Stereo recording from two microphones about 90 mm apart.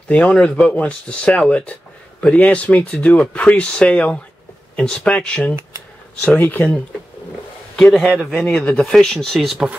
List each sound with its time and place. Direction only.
0.1 s speech: 15° left (ahead or behind)
7.7 s speech: 5° left (ahead or behind)